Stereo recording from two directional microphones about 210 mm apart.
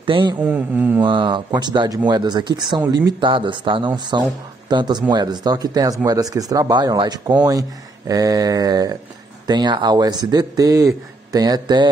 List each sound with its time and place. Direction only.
0.0 s speech: 25° right (ahead or behind)
0.4 s mantra: 10° right (ahead or behind)
1.0 s speech: 20° right (ahead or behind)
8.1 s mantra: 15° right (ahead or behind)
9.5 s speech: 20° right (ahead or behind)